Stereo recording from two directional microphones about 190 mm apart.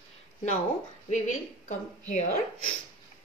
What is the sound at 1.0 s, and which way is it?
Speech, 40° left (ahead or behind).